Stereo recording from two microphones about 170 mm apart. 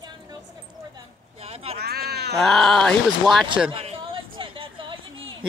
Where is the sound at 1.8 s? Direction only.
70° right (ahead or behind).